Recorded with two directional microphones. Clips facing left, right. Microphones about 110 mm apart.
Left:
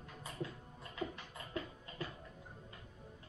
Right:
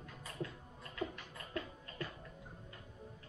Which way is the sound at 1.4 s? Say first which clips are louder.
Even; 15° left (ahead or behind).